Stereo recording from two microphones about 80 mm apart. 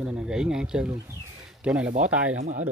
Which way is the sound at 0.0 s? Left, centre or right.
Centre.